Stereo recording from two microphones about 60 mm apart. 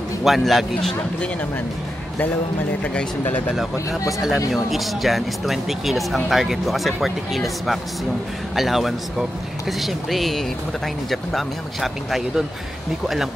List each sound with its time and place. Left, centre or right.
0.2 s speech: centre
2.8 s speech: centre
4.5 s speech: centre